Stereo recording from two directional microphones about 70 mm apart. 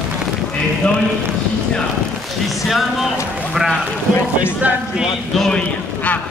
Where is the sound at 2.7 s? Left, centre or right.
Centre.